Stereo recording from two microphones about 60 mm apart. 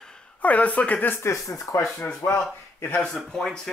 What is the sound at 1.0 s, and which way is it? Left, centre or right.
Speech, left.